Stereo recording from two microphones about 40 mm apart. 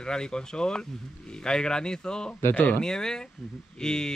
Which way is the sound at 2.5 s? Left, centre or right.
Left.